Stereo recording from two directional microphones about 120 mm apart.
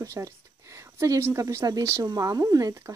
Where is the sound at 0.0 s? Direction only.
25° right (ahead or behind).